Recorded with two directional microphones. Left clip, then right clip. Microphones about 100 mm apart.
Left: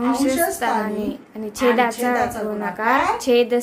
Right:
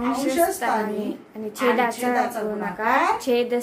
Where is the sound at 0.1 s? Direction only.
30° left (ahead or behind).